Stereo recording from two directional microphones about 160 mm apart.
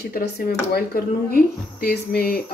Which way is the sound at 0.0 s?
70° left (ahead or behind).